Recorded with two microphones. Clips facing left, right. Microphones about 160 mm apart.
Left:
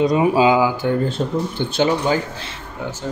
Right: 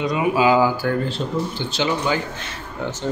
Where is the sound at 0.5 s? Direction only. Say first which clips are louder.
Left 1 dB; 15° left (ahead or behind).